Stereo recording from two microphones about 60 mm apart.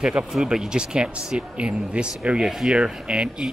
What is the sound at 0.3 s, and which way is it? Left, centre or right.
Speech, centre.